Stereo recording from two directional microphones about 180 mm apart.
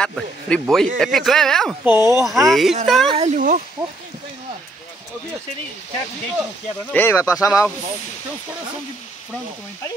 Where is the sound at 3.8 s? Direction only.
20° right (ahead or behind).